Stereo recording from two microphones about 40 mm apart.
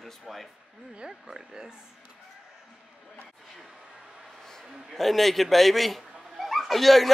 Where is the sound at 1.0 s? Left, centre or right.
Centre.